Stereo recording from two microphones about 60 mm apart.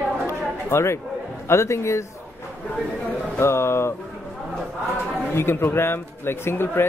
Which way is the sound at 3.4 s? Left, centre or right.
Left.